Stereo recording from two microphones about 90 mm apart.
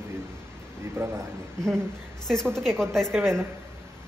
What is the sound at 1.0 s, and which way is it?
Speech, 30° right (ahead or behind).